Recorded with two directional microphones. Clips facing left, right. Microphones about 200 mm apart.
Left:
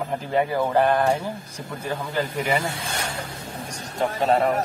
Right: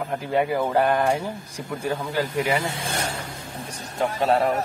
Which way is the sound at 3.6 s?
40° left (ahead or behind).